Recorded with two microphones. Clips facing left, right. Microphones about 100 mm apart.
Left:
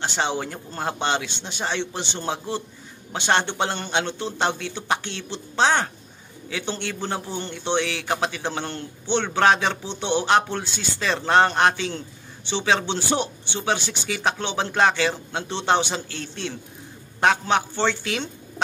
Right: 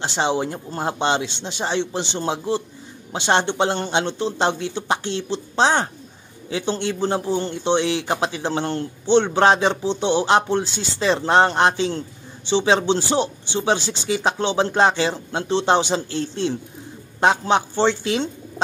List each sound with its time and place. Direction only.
0.0 s a man's voice: 25° right (ahead or behind)